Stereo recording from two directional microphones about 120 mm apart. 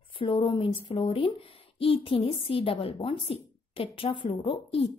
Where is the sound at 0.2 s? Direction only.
50° left (ahead or behind).